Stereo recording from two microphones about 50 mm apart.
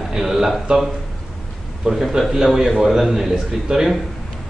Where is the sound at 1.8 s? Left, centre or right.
Centre.